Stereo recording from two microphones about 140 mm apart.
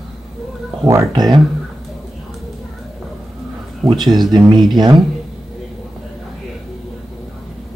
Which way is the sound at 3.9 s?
30° right (ahead or behind).